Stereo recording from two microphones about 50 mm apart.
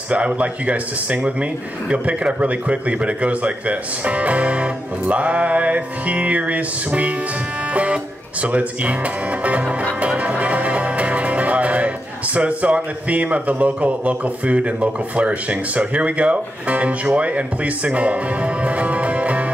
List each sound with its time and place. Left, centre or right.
0.1 s speech: right
9.9 s music: right
12.4 s speech: right